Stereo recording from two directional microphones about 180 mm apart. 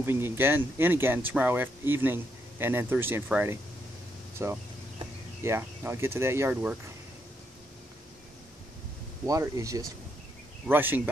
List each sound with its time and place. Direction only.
0.0 s speech: 15° right (ahead or behind)
9.2 s speech: 20° right (ahead or behind)